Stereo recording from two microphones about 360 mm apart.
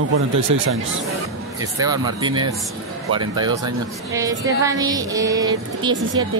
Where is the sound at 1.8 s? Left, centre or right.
Centre.